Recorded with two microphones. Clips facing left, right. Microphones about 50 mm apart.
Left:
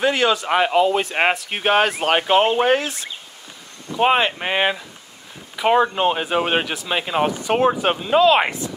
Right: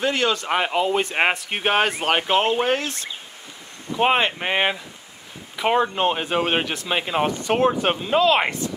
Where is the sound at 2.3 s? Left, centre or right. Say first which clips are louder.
Left 5 dB; left.